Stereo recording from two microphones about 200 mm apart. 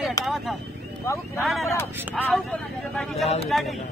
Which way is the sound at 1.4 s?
Centre (ahead or behind).